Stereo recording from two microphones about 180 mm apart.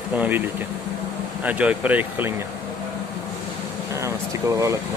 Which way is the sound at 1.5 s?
10° right (ahead or behind).